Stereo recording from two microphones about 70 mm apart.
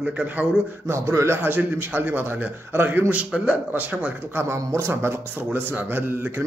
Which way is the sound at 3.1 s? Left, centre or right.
Centre.